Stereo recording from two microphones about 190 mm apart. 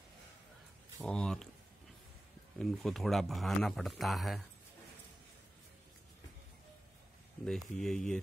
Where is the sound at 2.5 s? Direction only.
Centre (ahead or behind).